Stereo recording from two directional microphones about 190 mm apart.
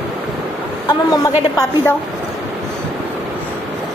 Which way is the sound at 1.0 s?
15° left (ahead or behind).